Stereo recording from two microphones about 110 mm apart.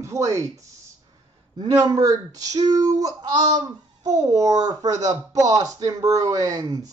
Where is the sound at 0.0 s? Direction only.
30° right (ahead or behind).